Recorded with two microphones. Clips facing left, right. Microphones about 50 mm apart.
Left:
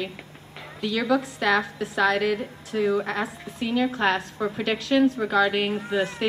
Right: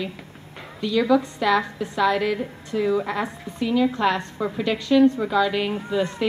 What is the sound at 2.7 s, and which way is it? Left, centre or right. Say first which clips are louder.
Speech: right 1 dB; left.